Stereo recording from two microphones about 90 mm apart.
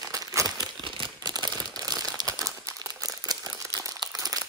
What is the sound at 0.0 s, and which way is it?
Crumpling, 40° right (ahead or behind).